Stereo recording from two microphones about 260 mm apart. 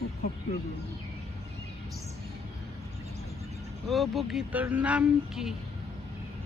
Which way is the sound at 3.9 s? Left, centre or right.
Centre.